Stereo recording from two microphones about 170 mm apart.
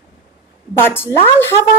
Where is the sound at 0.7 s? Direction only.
10° left (ahead or behind).